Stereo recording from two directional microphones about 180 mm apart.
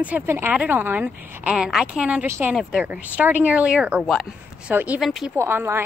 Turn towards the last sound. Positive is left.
turn(degrees=-15)  # may be behind; listen again after turning